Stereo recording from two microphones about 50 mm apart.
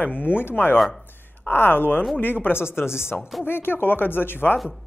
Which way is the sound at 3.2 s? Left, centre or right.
Centre.